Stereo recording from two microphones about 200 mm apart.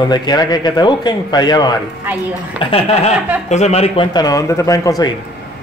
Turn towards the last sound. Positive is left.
turn(degrees=15)  # may be behind; listen again after turning